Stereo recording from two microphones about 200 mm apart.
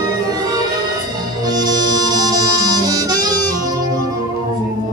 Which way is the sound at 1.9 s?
20° right (ahead or behind).